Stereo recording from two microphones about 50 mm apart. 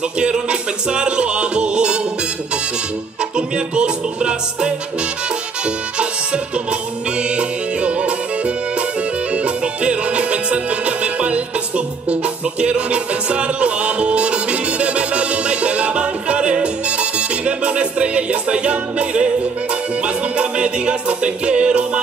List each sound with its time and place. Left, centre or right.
0.2 s music: centre
3.3 s music: centre
5.9 s music: right